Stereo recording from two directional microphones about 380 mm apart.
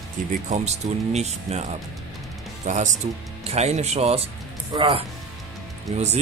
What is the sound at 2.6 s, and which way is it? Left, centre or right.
Speech, centre.